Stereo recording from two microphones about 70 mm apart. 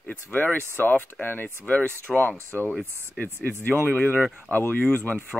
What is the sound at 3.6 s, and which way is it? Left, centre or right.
Speech, right.